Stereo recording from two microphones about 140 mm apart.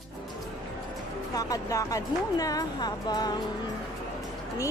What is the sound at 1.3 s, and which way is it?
A woman's voice, 25° left (ahead or behind).